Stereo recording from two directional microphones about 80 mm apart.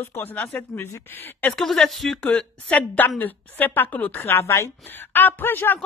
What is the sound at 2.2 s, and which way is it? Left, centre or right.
A woman's voice, centre.